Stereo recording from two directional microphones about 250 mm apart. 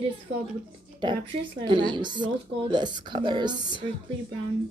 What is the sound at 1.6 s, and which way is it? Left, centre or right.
A woman's voice, centre.